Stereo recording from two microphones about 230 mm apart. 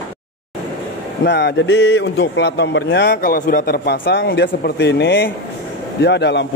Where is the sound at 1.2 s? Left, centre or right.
Left.